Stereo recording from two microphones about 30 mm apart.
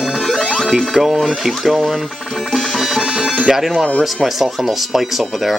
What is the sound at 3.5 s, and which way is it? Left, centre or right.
Speech, centre.